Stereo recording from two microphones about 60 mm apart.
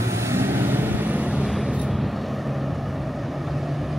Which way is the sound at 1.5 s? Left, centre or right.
Centre.